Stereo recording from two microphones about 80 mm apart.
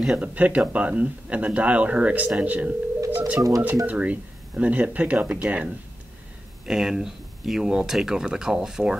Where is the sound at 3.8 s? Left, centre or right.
Centre.